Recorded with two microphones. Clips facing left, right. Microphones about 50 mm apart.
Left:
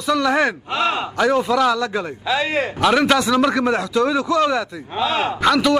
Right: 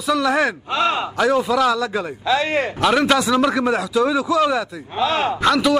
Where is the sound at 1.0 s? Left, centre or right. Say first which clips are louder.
Even; centre.